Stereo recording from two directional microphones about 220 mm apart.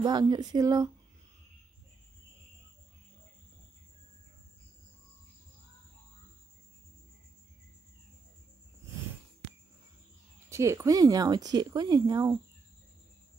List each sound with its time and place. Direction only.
0.0 s speech: 20° right (ahead or behind)
10.5 s speech: 15° right (ahead or behind)